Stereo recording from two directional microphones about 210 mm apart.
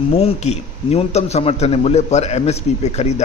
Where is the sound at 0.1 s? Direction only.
30° left (ahead or behind).